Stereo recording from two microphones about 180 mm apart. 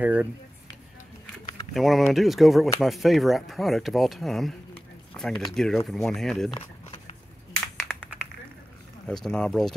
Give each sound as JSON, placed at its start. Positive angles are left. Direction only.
{"t": 0.0, "sound": "speech", "side_deg": -10}
{"t": 1.7, "sound": "speech", "side_deg": 0}
{"t": 6.5, "sound": "a sound", "side_deg": 35}
{"t": 9.0, "sound": "speech", "side_deg": 5}